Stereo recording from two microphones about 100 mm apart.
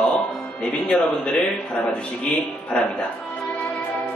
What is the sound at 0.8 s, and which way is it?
Speech, 10° left (ahead or behind).